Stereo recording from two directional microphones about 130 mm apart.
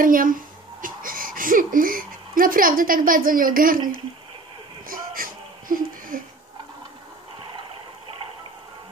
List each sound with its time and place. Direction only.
0.0 s speech: 90° right
0.8 s a sound: 90° right
4.8 s music: 90° right